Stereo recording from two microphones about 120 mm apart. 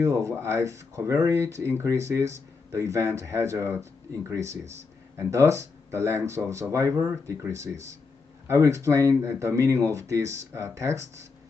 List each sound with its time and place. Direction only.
0.0 s speech: 25° right (ahead or behind)